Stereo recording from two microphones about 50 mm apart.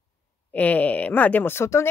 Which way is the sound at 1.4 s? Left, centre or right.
Left.